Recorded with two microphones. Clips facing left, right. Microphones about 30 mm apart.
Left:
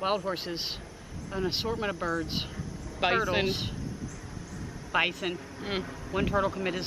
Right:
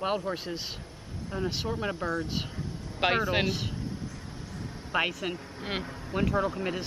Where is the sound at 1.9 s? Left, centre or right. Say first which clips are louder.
Even; right.